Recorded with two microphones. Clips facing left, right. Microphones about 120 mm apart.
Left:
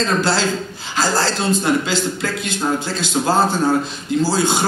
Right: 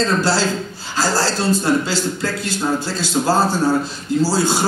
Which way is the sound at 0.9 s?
20° left (ahead or behind).